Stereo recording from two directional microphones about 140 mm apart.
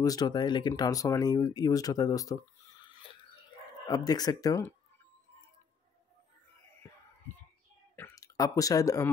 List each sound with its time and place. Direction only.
0.0 s speech: 25° left (ahead or behind)
3.8 s speech: 25° left (ahead or behind)
8.1 s speech: 25° left (ahead or behind)